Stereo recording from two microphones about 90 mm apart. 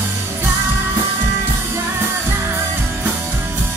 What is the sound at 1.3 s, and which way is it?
Music, 30° right (ahead or behind).